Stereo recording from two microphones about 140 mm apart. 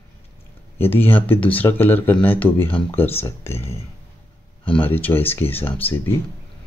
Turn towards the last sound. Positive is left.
turn(degrees=15)  # may be behind; listen again after turning